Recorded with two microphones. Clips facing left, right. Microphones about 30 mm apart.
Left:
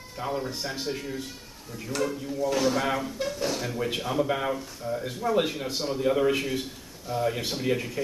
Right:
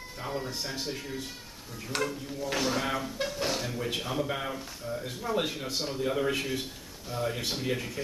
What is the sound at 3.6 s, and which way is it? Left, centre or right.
A man's voice, centre.